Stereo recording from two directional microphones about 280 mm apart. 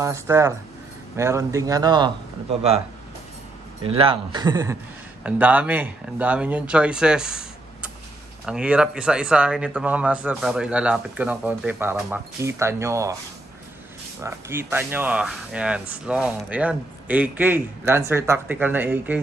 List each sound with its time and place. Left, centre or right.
0.0 s speech: centre
3.8 s speech: centre
14.2 s speech: centre